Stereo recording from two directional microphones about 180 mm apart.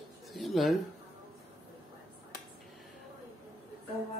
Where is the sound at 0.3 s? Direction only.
Centre (ahead or behind).